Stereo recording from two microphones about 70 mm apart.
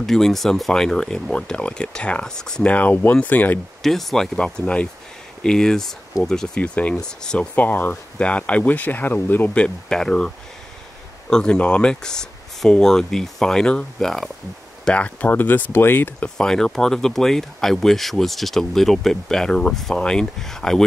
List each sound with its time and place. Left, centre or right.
0.0 s speech: centre; by 3.5 s left
3.8 s speech: centre
7.5 s speech: left
9.6 s speech: centre
14.9 s speech: left
16.3 s speech: centre